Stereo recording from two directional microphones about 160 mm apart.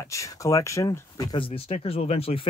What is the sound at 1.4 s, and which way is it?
Speech, 35° left (ahead or behind).